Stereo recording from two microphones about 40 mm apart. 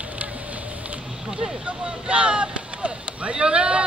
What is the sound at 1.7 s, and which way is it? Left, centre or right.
Speech, right.